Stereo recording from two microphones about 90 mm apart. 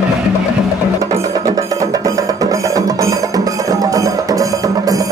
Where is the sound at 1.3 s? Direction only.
40° right (ahead or behind).